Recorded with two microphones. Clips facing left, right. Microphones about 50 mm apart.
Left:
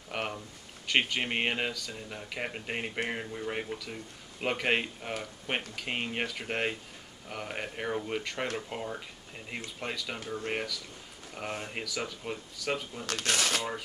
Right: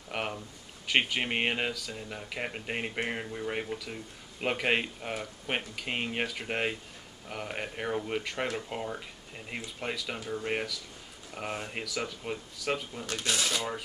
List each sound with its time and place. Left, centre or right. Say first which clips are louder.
0.1 s a sound: right 1 dB; centre
0.8 s speech: right 1 dB; centre
13.0 s speech: left 3 dB; left